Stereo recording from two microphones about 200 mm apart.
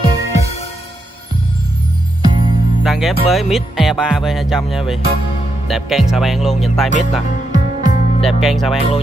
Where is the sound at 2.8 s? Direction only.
Centre (ahead or behind).